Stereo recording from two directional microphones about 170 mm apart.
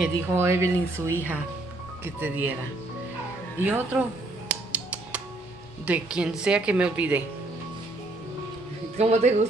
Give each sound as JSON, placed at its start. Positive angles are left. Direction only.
{"t": 0.0, "sound": "speech", "side_deg": -15}
{"t": 3.6, "sound": "speech", "side_deg": -10}
{"t": 4.5, "sound": "music", "side_deg": -5}
{"t": 5.9, "sound": "speech", "side_deg": -5}
{"t": 8.9, "sound": "speech", "side_deg": -40}